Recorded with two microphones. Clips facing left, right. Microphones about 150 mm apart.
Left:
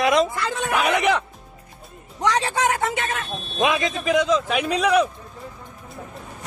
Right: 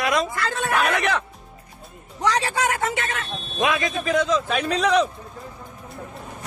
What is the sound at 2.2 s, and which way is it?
A man's voice, 20° left (ahead or behind).